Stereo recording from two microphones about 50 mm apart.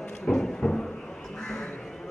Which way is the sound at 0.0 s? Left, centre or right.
Centre.